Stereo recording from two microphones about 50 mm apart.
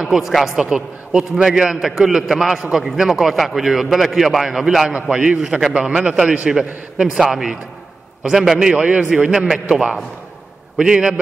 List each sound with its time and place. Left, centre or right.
0.0 s a man's voice: centre
0.7 s a man's voice: centre
9.1 s a man's voice: centre
9.7 s a man's voice: right